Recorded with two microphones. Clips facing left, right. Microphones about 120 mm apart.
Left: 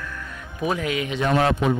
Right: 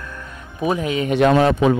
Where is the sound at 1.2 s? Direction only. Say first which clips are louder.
Right 6 dB; 90° right.